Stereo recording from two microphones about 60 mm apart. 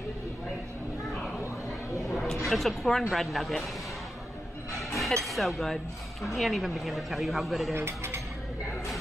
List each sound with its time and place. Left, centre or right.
2.0 s a sound: centre
2.5 s speech: centre
4.7 s speech: centre
7.7 s mechanisms: right